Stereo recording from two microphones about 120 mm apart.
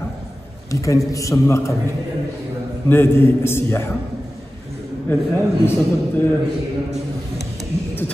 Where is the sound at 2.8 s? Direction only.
20° left (ahead or behind).